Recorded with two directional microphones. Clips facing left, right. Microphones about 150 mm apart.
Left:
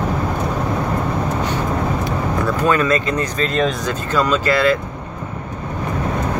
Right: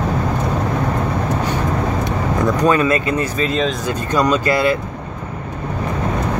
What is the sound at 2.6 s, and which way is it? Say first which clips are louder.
Speech: right 1 dB; 15° right (ahead or behind).